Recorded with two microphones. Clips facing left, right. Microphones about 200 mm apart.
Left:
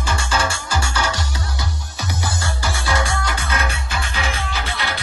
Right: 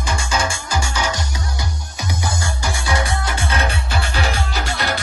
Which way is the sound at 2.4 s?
20° right (ahead or behind).